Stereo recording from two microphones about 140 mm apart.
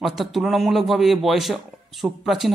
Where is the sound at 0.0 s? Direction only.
Centre (ahead or behind).